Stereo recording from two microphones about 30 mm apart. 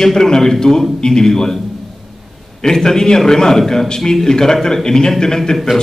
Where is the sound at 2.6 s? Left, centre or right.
Centre.